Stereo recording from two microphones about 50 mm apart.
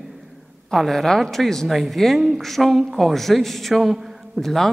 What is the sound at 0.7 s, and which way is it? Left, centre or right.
A man's voice, centre.